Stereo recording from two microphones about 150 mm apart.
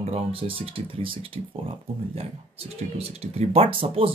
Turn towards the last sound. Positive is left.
turn(degrees=-35)  # may be behind; listen again after turning